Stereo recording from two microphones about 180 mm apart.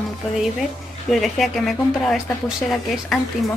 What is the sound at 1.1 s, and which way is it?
Speech, centre (ahead or behind).